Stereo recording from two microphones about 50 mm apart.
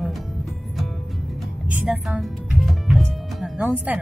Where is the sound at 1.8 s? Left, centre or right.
Centre.